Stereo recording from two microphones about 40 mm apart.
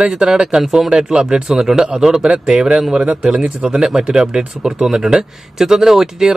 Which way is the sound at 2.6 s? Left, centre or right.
Right.